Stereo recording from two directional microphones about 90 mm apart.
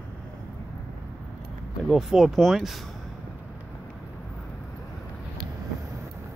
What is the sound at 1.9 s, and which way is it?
Speech, centre (ahead or behind).